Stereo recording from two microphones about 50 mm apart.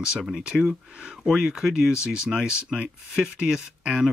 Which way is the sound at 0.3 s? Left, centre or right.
Centre.